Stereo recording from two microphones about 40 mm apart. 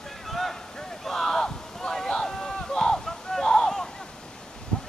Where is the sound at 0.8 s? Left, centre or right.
Centre.